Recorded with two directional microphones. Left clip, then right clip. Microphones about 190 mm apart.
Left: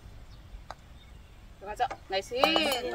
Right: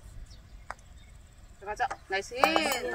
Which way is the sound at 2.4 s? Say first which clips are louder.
Even; 5° left (ahead or behind).